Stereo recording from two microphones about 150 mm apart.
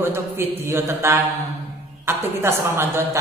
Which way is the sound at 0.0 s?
15° right (ahead or behind).